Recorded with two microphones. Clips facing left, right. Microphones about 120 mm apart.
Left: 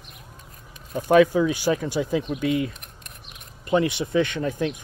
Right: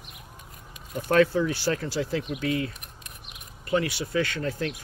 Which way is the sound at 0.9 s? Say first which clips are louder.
Left 4 dB; 15° left (ahead or behind).